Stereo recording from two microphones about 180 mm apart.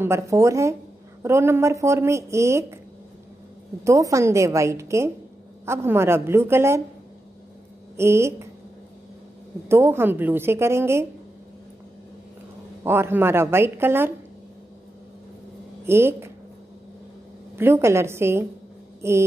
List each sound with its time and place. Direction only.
0.0 s speech: 15° right (ahead or behind)
3.8 s speech: 15° right (ahead or behind)
7.9 s a woman's voice: 15° right (ahead or behind)
9.7 s speech: 15° right (ahead or behind)
12.8 s speech: 10° right (ahead or behind)
15.8 s speech: 15° right (ahead or behind)
17.6 s speech: 15° right (ahead or behind)